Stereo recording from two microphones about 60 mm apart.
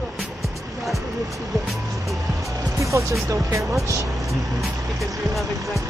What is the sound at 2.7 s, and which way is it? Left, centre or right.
Music, right.